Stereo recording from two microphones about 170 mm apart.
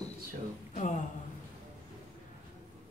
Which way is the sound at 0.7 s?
45° left (ahead or behind).